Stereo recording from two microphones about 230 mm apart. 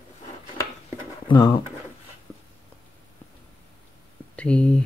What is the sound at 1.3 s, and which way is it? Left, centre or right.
Speech, centre.